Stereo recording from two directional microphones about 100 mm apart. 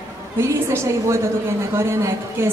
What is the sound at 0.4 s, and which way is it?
A woman's voice, 30° right (ahead or behind).